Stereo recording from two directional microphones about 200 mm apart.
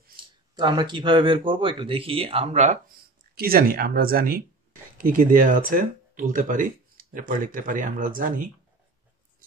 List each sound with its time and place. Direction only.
0.6 s speech: 25° right (ahead or behind)
3.3 s speech: 50° right (ahead or behind)